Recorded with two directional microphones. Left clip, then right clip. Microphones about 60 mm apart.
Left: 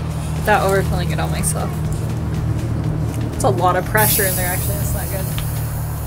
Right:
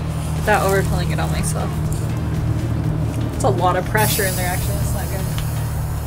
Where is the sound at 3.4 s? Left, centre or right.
Left.